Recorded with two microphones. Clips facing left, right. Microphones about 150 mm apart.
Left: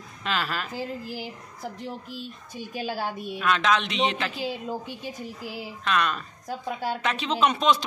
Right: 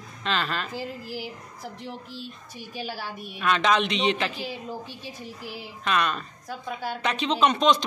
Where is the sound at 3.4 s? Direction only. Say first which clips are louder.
Right 1 dB; centre (ahead or behind).